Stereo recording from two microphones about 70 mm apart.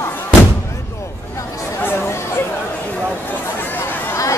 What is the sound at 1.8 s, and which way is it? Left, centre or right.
Speech, left.